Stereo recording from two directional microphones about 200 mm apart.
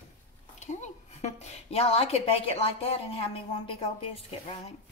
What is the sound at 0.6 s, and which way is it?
A woman's voice, 35° left (ahead or behind).